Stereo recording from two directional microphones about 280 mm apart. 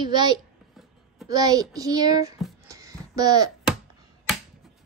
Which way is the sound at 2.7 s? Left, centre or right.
Centre.